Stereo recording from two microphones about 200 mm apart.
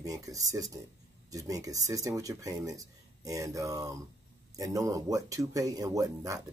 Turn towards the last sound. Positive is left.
turn(degrees=-15)  # may be behind; listen again after turning